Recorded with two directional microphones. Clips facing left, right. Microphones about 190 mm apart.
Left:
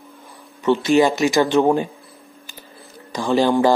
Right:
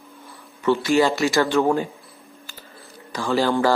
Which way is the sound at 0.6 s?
20° left (ahead or behind).